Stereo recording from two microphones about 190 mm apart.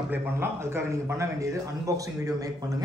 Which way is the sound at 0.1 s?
10° right (ahead or behind).